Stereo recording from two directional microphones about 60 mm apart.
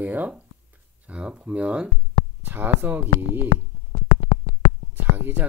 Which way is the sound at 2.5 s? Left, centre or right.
Right.